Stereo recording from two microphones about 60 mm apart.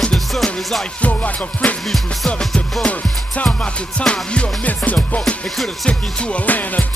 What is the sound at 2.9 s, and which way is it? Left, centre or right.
Music, left.